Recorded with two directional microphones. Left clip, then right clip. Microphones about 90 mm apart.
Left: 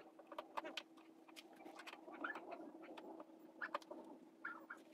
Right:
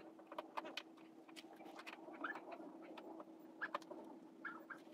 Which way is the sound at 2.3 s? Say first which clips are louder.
Even; centre (ahead or behind).